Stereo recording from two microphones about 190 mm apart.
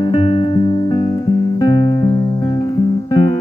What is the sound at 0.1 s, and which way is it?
Music, 30° left (ahead or behind).